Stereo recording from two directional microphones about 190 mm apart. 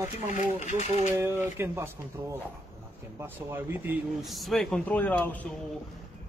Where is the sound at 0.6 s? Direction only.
40° left (ahead or behind).